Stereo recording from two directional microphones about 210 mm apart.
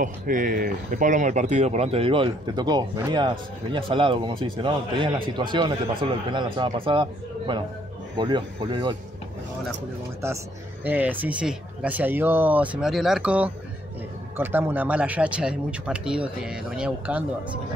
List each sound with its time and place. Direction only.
0.0 s speech: 40° right (ahead or behind); by 8.9 s 20° right (ahead or behind)
10.2 s speech: 10° right (ahead or behind)